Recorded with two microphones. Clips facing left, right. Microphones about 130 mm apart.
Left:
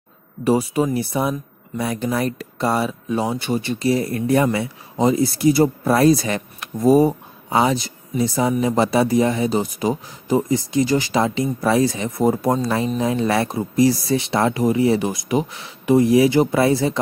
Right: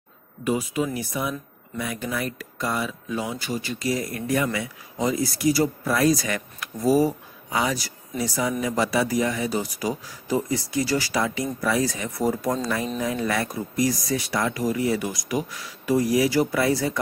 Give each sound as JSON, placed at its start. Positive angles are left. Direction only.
{"t": 0.4, "sound": "speech", "side_deg": 35}